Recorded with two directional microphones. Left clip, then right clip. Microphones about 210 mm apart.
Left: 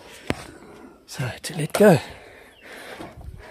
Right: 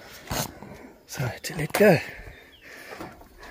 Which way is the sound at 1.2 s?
10° left (ahead or behind).